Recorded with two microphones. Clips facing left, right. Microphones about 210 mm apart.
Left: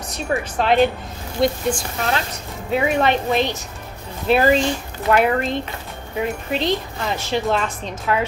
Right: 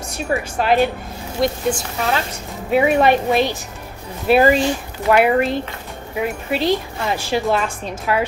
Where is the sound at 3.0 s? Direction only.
10° right (ahead or behind).